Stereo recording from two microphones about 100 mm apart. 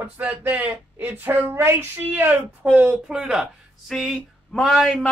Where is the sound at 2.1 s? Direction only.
15° right (ahead or behind).